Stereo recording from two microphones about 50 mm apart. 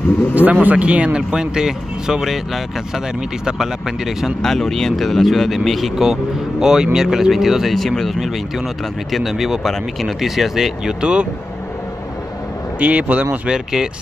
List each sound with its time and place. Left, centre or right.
0.3 s speech: right; by 2.6 s centre
4.4 s speech: centre
11.0 s speech: right
12.8 s speech: right
13.5 s speech: centre